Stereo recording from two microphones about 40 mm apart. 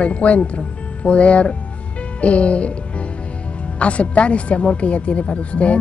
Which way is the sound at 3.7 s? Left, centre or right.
Left.